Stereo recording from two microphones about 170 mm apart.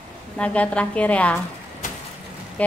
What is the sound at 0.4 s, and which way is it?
A woman's voice, 5° left (ahead or behind).